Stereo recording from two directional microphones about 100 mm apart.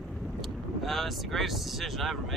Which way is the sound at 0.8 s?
Centre (ahead or behind).